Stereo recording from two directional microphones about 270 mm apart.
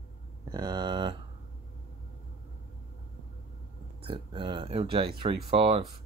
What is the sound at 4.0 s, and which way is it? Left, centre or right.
Speech, centre.